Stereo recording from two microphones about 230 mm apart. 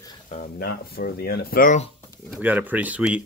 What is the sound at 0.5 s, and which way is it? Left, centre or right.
Speech, left.